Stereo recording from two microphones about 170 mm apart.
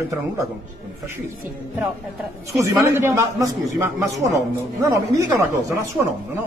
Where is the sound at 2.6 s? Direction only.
15° right (ahead or behind).